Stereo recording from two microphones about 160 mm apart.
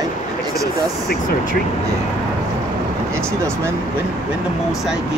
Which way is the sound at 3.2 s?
15° right (ahead or behind).